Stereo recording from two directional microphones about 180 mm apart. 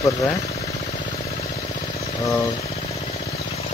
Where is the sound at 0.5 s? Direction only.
35° left (ahead or behind).